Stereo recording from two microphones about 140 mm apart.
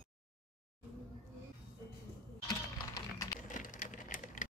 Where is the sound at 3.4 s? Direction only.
70° left (ahead or behind).